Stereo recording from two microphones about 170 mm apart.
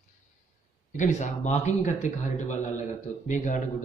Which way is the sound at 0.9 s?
45° left (ahead or behind).